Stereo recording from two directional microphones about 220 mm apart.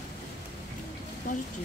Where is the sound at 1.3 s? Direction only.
35° left (ahead or behind).